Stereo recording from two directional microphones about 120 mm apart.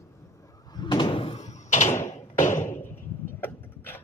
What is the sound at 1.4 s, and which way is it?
Door, 75° left (ahead or behind).